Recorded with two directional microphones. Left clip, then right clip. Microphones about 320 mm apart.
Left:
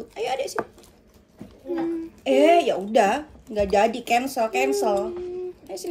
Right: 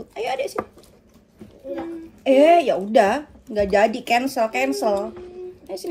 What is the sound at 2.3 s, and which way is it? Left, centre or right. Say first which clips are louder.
Speech: right 3 dB; centre.